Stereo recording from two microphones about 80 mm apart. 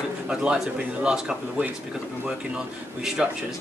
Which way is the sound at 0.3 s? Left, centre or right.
Centre.